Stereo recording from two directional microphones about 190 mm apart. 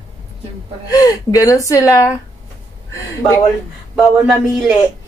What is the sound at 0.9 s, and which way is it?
A man's voice, 20° left (ahead or behind).